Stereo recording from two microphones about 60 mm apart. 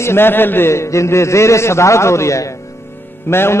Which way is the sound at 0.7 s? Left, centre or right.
Left.